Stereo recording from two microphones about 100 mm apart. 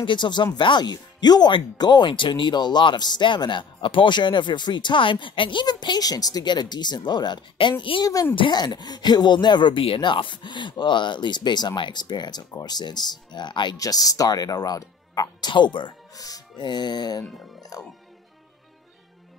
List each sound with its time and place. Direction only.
0.0 s speech: 50° left (ahead or behind)
7.5 s a woman's voice: 60° left (ahead or behind)
8.0 s speech: 40° left (ahead or behind)
13.7 s speech: 35° left (ahead or behind)
15.5 s speech: 50° left (ahead or behind)
17.7 s music: 40° left (ahead or behind)